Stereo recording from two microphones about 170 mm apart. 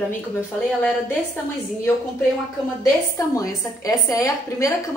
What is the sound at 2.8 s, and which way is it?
A woman's voice, 20° left (ahead or behind).